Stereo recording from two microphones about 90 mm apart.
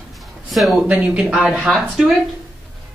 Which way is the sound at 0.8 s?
15° right (ahead or behind).